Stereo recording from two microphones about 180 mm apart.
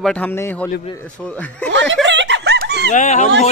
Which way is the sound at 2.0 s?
85° right.